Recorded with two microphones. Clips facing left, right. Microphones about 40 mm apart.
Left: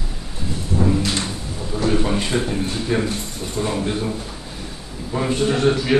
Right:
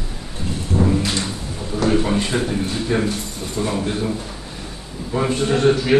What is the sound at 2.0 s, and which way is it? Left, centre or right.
A man's voice, centre.